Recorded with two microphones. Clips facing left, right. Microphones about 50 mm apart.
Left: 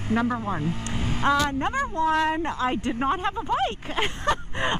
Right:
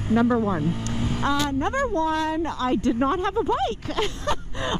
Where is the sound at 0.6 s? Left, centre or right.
Left.